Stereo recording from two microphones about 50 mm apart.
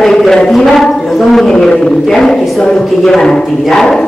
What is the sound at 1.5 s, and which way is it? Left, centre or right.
Speech, centre.